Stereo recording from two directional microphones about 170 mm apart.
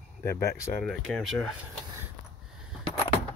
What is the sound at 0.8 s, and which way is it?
Speech, centre (ahead or behind).